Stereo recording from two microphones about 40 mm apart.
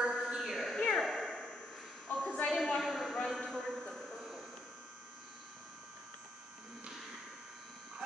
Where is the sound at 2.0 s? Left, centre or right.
Left.